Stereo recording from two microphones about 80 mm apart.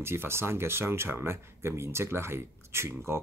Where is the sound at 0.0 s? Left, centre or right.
Right.